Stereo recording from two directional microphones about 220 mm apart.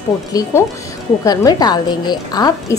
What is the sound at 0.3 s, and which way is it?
A woman's voice, 15° left (ahead or behind).